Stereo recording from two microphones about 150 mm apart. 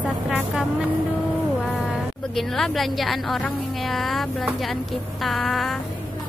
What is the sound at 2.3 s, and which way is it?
Speech, centre (ahead or behind).